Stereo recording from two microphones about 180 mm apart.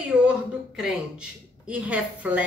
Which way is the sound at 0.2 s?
5° right (ahead or behind).